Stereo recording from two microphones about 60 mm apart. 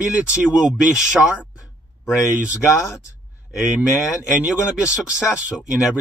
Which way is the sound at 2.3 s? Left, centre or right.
Right.